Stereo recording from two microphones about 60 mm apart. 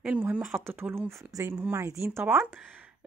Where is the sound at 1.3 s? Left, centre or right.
Right.